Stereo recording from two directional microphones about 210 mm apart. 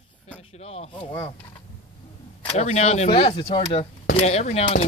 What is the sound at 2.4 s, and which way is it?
Speech, 30° left (ahead or behind).